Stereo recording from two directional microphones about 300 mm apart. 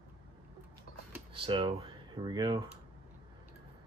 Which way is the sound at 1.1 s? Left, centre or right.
Centre.